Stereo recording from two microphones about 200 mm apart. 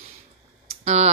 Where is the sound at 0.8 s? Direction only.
35° right (ahead or behind).